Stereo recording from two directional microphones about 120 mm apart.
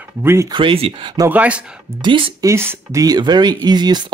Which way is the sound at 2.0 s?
45° right (ahead or behind).